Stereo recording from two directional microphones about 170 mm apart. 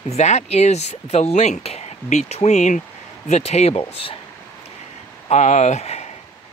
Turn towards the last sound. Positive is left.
turn(degrees=40)  # may be behind; listen again after turning